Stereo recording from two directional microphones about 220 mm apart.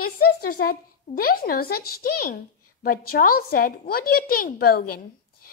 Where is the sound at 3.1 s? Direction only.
40° left (ahead or behind).